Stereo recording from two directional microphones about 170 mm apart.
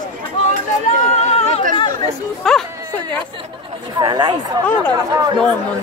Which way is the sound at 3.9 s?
25° right (ahead or behind).